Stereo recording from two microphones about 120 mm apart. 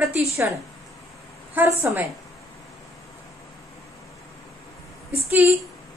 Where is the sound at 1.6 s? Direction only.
15° right (ahead or behind).